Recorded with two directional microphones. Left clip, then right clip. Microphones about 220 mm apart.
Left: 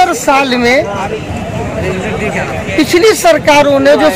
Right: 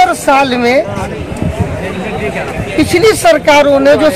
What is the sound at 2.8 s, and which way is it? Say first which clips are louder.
Speech: even; 10° right (ahead or behind).